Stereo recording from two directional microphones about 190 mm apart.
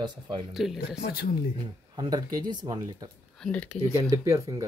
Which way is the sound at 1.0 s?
55° left (ahead or behind).